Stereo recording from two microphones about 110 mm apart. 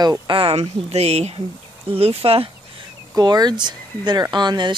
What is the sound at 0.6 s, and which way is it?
Speech, 75° right (ahead or behind).